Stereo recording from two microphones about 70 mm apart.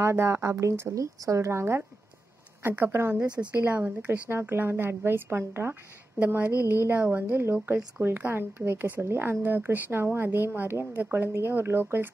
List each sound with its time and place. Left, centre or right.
0.0 s a woman's voice: right; by 4.2 s centre
4.3 s a woman's voice: right
6.1 s a woman's voice: right